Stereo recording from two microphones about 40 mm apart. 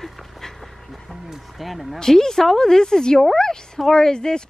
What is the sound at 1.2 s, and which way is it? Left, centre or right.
Speech, centre.